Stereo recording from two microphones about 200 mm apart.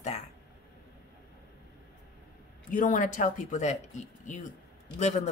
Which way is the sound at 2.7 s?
40° left (ahead or behind).